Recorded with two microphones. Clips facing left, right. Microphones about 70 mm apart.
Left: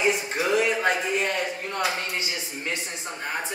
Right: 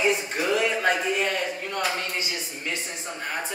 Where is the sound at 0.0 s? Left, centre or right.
Centre.